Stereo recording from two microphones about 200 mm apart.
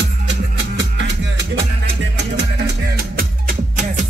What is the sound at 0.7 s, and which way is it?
Music, 65° right (ahead or behind).